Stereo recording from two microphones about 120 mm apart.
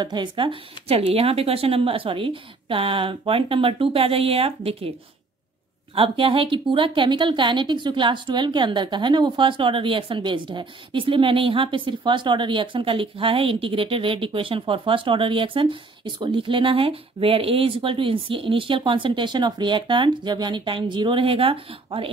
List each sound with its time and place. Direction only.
0.0 s a woman's voice: 40° right (ahead or behind)
5.9 s a woman's voice: 45° right (ahead or behind)